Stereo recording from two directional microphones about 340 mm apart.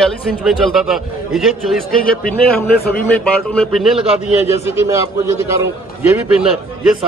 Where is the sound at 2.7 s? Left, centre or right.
Left.